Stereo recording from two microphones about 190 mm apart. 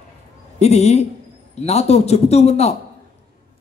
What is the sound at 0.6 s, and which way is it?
Speech, 35° left (ahead or behind).